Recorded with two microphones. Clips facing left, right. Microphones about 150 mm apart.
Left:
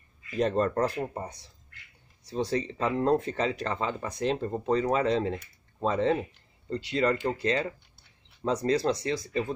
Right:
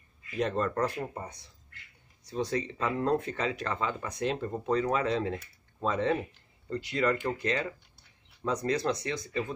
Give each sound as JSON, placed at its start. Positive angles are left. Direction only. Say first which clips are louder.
{"t": 0.4, "sound": "speech", "louder": "left 3 dB", "side_deg": 35}
{"t": 8.5, "sound": "speech", "louder": "left 3 dB", "side_deg": 30}